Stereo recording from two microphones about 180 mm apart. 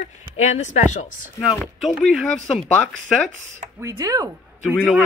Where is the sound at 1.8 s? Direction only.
Centre (ahead or behind).